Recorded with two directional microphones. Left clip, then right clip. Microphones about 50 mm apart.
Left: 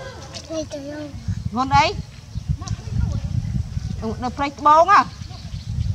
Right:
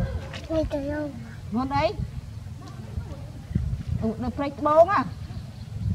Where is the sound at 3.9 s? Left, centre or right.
Left.